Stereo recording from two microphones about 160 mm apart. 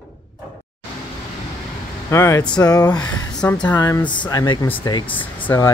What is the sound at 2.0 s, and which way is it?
Speech, 20° left (ahead or behind).